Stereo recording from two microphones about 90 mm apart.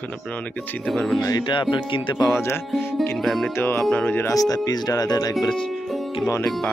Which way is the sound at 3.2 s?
Centre (ahead or behind).